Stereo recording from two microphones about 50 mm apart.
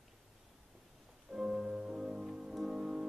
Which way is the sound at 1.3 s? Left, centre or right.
Centre.